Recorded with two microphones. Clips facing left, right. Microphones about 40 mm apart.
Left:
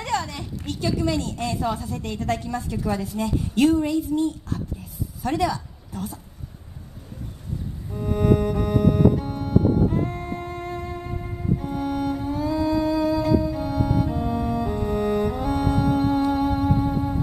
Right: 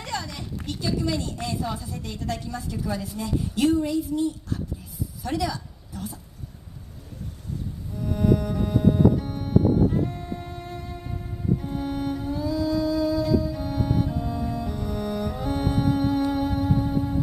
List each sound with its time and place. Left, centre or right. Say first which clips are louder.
0.0 s a woman's voice: left 5 dB; left
7.9 s music: left 2 dB; left